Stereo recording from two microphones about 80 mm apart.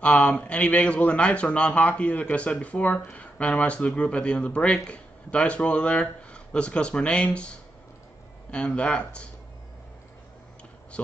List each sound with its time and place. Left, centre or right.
0.0 s a man's voice: centre
8.5 s a man's voice: centre